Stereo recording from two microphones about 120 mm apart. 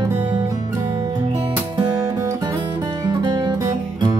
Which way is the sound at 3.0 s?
35° right (ahead or behind).